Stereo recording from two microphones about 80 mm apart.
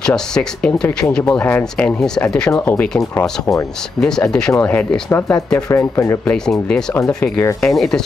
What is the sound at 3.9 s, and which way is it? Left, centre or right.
Speech, centre.